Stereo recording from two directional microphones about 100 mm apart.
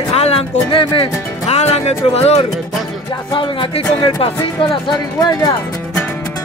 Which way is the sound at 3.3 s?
55° left (ahead or behind).